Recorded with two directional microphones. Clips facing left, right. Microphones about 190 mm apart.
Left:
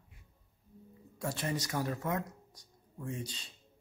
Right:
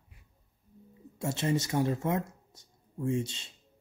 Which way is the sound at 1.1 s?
25° right (ahead or behind).